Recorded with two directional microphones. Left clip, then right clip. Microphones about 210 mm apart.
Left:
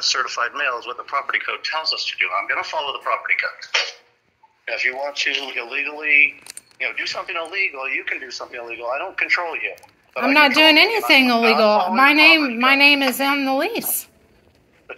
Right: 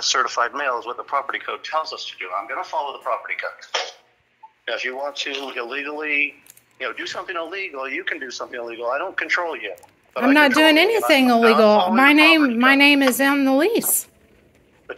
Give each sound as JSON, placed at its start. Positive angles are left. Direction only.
{"t": 0.0, "sound": "a woman's voice", "side_deg": -50}
{"t": 3.1, "sound": "a woman's voice", "side_deg": -35}
{"t": 10.2, "sound": "a woman's voice", "side_deg": -40}